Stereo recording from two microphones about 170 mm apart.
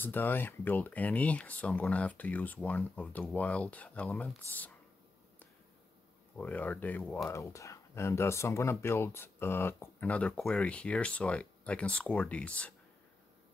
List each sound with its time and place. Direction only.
0.0 s speech: 10° left (ahead or behind)
6.3 s speech: 10° left (ahead or behind)